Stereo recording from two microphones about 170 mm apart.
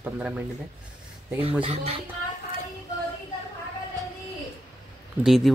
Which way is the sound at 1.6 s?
35° right (ahead or behind).